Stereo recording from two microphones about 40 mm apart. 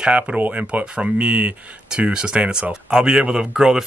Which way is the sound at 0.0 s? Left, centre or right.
Right.